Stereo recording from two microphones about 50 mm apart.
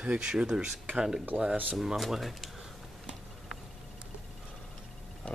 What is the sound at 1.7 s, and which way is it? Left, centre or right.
Speech, centre.